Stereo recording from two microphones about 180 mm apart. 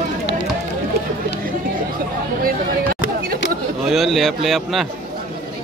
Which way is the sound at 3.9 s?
Centre (ahead or behind).